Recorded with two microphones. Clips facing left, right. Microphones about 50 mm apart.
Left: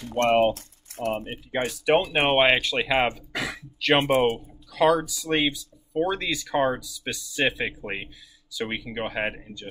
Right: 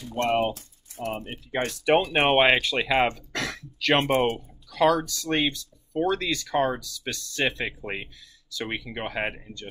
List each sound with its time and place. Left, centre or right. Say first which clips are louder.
0.0 s speech: left 3 dB; left
0.5 s typing: left 6 dB; left
1.5 s speech: even; centre